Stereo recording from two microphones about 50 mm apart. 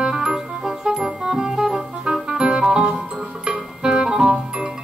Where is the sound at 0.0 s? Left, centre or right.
Centre.